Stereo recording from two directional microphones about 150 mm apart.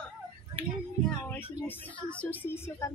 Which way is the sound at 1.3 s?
10° left (ahead or behind).